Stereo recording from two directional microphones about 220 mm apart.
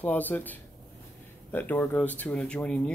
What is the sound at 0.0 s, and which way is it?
Speech, 5° left (ahead or behind).